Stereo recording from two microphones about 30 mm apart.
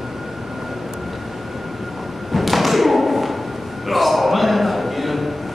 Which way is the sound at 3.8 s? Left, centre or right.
Centre.